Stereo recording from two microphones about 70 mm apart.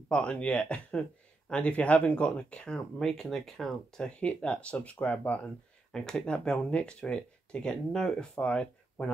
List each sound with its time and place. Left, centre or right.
0.1 s speech: centre
5.9 s speech: centre